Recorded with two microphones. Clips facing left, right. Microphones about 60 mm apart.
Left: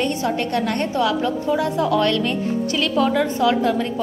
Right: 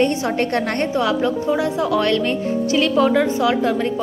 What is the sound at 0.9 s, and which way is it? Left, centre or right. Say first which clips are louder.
A woman's voice: right 2 dB; right.